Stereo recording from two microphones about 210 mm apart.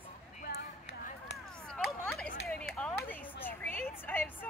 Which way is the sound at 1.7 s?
Centre (ahead or behind).